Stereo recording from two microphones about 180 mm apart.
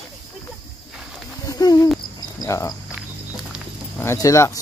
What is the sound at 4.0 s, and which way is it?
Speech, 15° left (ahead or behind).